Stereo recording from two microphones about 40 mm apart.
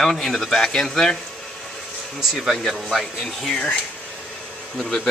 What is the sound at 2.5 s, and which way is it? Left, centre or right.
Speech, centre.